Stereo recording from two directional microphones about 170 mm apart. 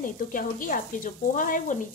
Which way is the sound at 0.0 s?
55° left (ahead or behind).